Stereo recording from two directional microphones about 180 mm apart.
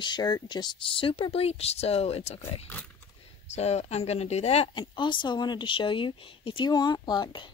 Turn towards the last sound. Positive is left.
turn(degrees=25)  # may be behind; listen again after turning